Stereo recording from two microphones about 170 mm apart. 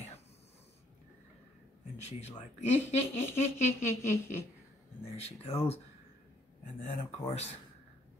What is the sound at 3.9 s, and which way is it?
Speech, 15° left (ahead or behind).